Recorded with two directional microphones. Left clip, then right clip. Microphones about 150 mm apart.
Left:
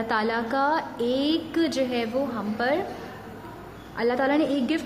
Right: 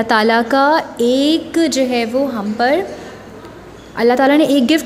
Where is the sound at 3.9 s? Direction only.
45° right (ahead or behind).